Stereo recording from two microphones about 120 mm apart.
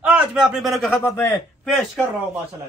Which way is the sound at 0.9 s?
20° left (ahead or behind).